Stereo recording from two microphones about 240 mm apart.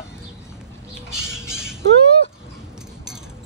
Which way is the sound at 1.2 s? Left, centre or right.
Centre.